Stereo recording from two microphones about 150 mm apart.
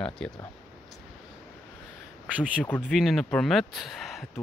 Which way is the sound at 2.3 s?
10° right (ahead or behind).